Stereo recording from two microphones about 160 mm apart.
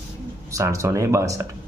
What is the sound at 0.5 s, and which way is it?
Speech, 20° right (ahead or behind).